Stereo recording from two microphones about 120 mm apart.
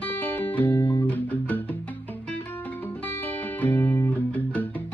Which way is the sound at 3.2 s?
15° left (ahead or behind).